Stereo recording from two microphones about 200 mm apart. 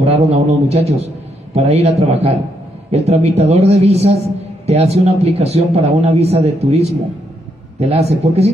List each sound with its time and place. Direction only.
0.0 s a man's voice: 30° right (ahead or behind)